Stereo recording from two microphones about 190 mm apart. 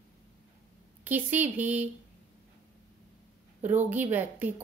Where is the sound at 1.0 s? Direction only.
10° right (ahead or behind).